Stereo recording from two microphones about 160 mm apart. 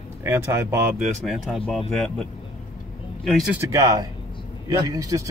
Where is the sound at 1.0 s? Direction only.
Centre (ahead or behind).